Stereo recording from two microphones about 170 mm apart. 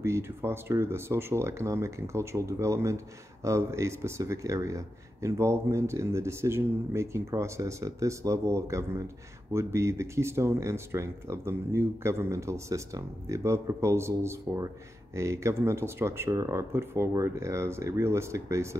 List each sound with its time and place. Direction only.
0.0 s speech: 15° right (ahead or behind)